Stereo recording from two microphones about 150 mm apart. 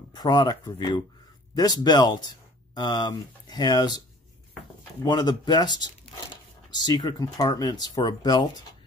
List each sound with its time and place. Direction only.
0.1 s speech: 30° left (ahead or behind)
5.0 s speech: 30° left (ahead or behind)